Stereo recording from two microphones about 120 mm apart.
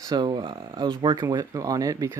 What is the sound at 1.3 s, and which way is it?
Speech, 30° right (ahead or behind).